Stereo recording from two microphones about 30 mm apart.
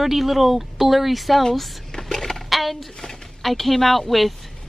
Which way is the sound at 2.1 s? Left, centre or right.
Centre.